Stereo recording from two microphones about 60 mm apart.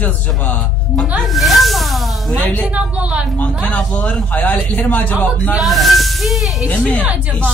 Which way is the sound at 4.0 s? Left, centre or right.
Left.